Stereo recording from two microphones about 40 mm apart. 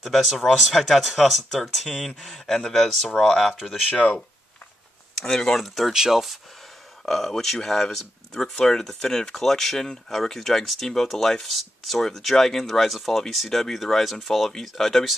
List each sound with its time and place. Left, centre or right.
0.0 s speech: centre
3.9 s speech: left
5.2 s speech: centre
5.6 s speech: centre
5.9 s speech: centre
7.1 s speech: centre